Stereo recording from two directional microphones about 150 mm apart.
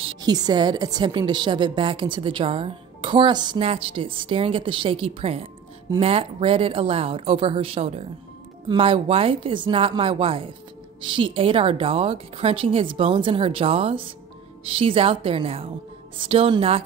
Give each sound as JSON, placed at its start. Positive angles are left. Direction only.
{"t": 0.0, "sound": "a woman's voice", "side_deg": -30}